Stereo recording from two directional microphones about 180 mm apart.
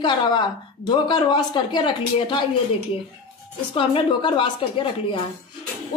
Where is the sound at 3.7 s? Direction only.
30° left (ahead or behind).